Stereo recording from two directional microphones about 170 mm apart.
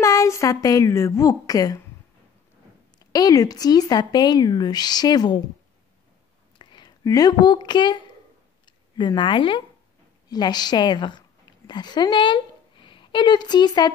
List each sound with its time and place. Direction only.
0.0 s speech: 20° left (ahead or behind)
3.1 s speech: 20° left (ahead or behind)
6.6 s speech: 25° left (ahead or behind)
8.6 s a sound: 25° left (ahead or behind)
10.3 s a woman's voice: 25° left (ahead or behind)